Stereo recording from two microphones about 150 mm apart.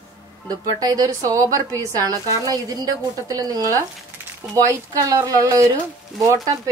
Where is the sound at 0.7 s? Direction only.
25° right (ahead or behind).